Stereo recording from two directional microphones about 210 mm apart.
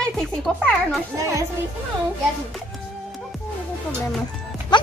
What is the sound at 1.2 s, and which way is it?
Speech, 15° right (ahead or behind).